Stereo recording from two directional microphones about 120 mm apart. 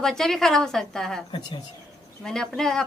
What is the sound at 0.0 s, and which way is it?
Speech, 5° left (ahead or behind).